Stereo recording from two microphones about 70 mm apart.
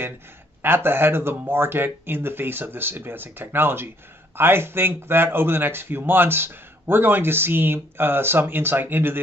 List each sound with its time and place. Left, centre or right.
0.6 s speech: right